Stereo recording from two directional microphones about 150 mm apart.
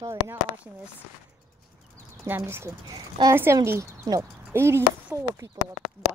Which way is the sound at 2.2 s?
20° right (ahead or behind).